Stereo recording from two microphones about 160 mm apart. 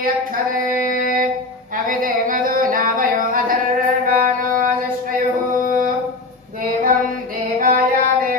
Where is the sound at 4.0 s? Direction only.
60° right (ahead or behind).